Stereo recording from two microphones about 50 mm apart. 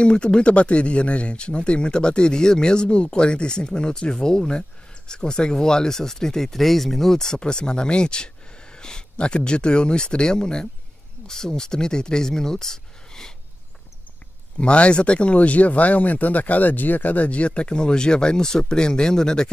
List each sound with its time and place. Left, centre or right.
0.0 s speech: centre
14.6 s speech: left